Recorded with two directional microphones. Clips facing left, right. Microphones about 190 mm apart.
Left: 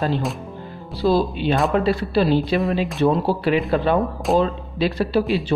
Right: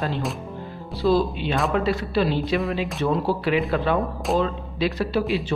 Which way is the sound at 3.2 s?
35° left (ahead or behind).